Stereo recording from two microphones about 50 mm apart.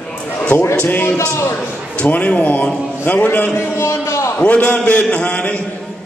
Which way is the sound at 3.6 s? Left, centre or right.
Left.